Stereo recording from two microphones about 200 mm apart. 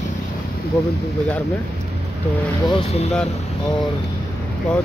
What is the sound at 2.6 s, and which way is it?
Speech, 30° left (ahead or behind).